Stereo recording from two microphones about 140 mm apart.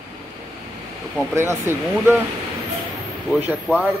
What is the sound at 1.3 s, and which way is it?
Speech, 20° right (ahead or behind).